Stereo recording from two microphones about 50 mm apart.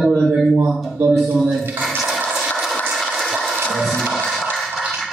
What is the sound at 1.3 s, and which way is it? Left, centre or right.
Speech, centre.